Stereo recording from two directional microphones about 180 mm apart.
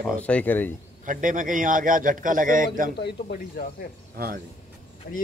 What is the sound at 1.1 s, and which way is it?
Speech, 45° right (ahead or behind).